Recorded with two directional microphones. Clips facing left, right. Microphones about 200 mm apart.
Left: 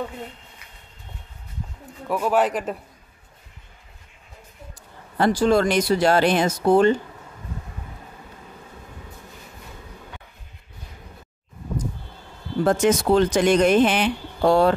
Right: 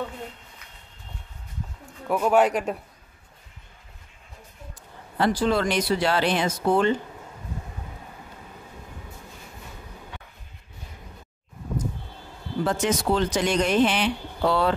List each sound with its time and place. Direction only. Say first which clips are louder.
2.0 s speech: right 1 dB; centre (ahead or behind)
5.2 s speech: left 4 dB; 45° left (ahead or behind)
12.6 s speech: left 6 dB; 50° left (ahead or behind)